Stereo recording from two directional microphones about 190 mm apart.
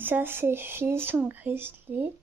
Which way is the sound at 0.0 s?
10° right (ahead or behind).